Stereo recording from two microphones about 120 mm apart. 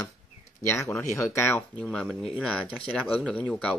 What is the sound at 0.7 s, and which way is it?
Speech, 25° left (ahead or behind).